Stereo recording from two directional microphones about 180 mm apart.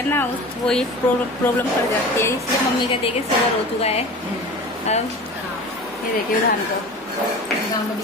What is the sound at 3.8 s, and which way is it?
Speech, 35° left (ahead or behind).